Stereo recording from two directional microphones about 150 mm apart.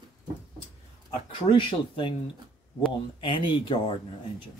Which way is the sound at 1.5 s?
35° left (ahead or behind).